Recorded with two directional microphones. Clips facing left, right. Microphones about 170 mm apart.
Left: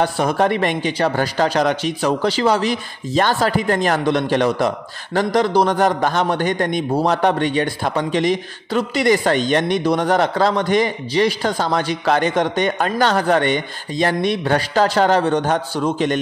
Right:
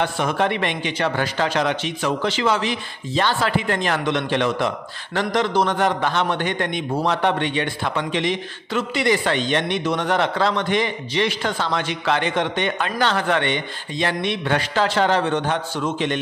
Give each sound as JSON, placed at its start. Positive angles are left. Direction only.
{"t": 0.0, "sound": "a man's voice", "side_deg": 40}